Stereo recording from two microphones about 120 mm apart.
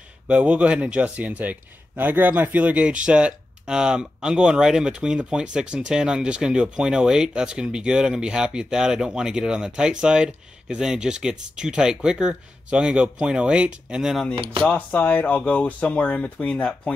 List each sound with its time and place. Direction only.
0.3 s a man's voice: 10° right (ahead or behind)
14.3 s speech: 45° right (ahead or behind)
14.7 s speech: 15° left (ahead or behind)